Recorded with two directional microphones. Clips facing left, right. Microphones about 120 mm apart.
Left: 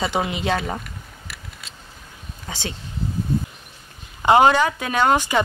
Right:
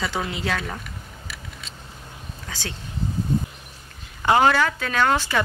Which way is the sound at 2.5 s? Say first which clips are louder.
Left 4 dB; 20° left (ahead or behind).